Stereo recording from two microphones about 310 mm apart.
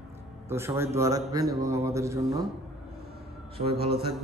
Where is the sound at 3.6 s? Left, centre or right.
Right.